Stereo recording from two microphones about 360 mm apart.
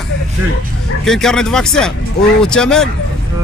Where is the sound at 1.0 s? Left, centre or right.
Centre.